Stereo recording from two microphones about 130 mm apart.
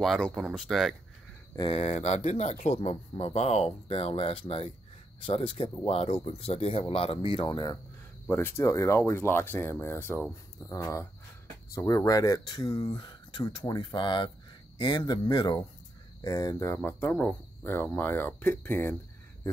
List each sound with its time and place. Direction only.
0.0 s speech: centre (ahead or behind)
1.7 s speech: 50° left (ahead or behind); by 7.8 s 30° left (ahead or behind)
8.3 s speech: 15° left (ahead or behind)